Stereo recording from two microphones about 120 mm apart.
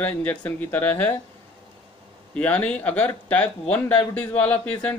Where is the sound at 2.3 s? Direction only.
10° left (ahead or behind).